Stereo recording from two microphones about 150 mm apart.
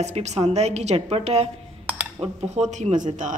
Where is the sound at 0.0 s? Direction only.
50° right (ahead or behind).